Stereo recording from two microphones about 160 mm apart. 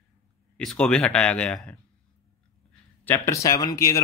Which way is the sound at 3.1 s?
20° left (ahead or behind).